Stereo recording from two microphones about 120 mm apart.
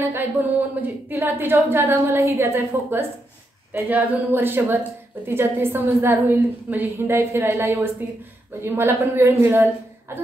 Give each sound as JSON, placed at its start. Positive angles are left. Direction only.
{"t": 0.0, "sound": "a woman's voice", "side_deg": -15}